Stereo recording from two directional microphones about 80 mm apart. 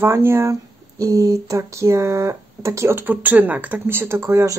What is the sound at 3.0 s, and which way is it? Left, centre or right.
A woman's voice, right.